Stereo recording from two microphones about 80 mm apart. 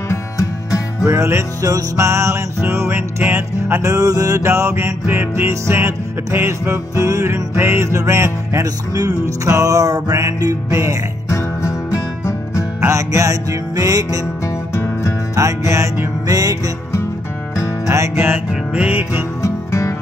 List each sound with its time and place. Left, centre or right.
0.1 s music: left
1.0 s music: right
3.9 s music: right
5.0 s music: right
8.6 s music: right
11.2 s music: left
12.8 s music: right
14.4 s music: left
15.3 s music: right
16.3 s music: right
17.8 s music: right
18.5 s music: centre
19.4 s music: left